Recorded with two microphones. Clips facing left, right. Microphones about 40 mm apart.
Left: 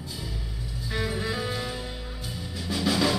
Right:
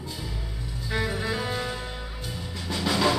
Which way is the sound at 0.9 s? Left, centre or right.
Centre.